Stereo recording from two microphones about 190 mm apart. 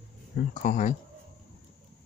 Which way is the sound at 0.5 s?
40° left (ahead or behind).